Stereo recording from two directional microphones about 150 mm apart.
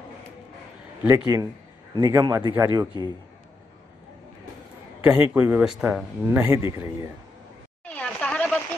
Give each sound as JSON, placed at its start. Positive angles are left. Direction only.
{"t": 1.0, "sound": "a man's voice", "side_deg": -20}
{"t": 5.1, "sound": "speech", "side_deg": -15}
{"t": 7.9, "sound": "a sound", "side_deg": 5}